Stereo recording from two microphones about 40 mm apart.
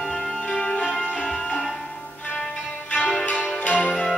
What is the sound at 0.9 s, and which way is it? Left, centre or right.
Music, right.